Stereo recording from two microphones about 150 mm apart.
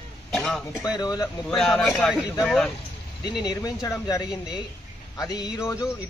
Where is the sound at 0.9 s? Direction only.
25° left (ahead or behind).